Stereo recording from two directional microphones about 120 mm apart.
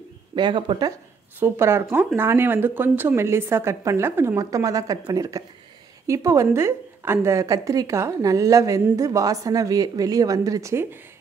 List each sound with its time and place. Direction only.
0.4 s speech: 40° right (ahead or behind)
1.4 s a woman's voice: 20° right (ahead or behind)